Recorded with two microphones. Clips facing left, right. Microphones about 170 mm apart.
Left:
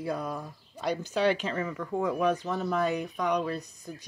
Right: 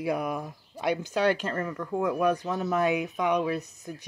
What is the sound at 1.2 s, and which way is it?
Speech, 50° right (ahead or behind).